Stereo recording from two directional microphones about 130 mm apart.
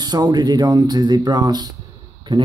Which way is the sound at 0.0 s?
30° right (ahead or behind).